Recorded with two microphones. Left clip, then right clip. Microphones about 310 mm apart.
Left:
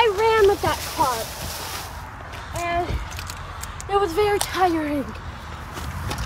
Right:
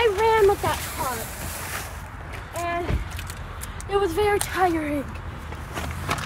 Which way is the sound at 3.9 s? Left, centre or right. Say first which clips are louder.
Left 2 dB; left.